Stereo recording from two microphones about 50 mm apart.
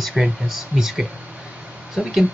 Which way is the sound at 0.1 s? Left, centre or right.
Centre.